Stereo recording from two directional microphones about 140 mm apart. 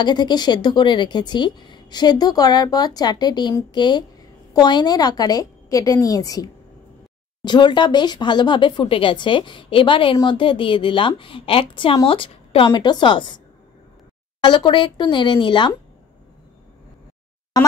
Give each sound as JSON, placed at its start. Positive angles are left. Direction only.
{"t": 0.0, "sound": "a woman's voice", "side_deg": 30}
{"t": 14.4, "sound": "speech", "side_deg": 35}